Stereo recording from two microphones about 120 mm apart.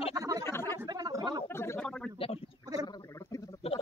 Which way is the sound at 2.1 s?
50° left (ahead or behind).